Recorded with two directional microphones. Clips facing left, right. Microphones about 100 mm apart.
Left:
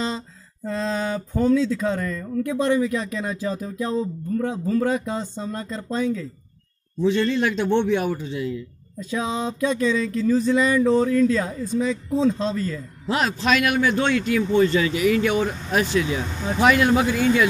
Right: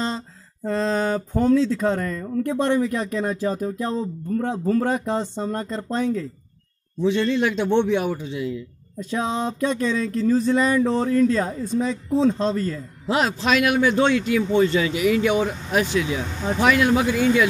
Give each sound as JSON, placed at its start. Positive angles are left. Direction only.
{"t": 0.7, "sound": "speech", "side_deg": -50}
{"t": 7.0, "sound": "a man's voice", "side_deg": -15}
{"t": 9.1, "sound": "speech", "side_deg": -45}
{"t": 10.8, "sound": "speech", "side_deg": -35}
{"t": 13.0, "sound": "a man's voice", "side_deg": -20}